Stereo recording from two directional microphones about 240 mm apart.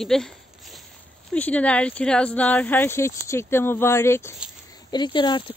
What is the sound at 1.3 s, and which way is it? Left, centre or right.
Speech, centre.